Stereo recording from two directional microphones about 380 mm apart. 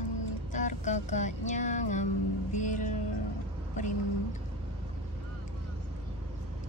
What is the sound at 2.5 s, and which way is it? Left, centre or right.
Vehicle, centre.